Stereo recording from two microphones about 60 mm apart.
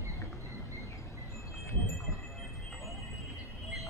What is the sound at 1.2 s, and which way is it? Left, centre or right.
Wind chime, left.